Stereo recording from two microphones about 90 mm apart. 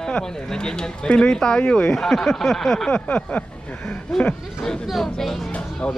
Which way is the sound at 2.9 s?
15° left (ahead or behind).